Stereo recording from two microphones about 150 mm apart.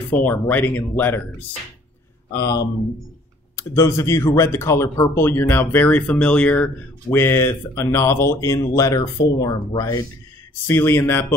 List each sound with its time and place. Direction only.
0.1 s speech: 10° left (ahead or behind)
2.3 s speech: 25° left (ahead or behind)
3.7 s speech: 20° left (ahead or behind)